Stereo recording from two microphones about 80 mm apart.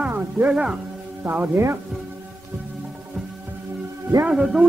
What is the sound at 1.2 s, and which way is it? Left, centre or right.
Speech, right.